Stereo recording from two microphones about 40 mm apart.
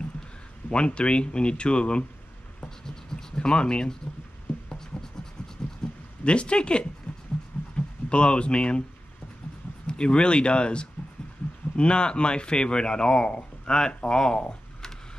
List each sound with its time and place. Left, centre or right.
0.7 s speech: left
3.2 s speech: centre
5.8 s a sound: centre
6.2 s speech: left
9.8 s speech: left